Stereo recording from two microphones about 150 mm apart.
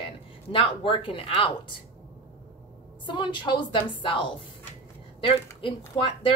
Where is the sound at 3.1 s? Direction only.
30° left (ahead or behind).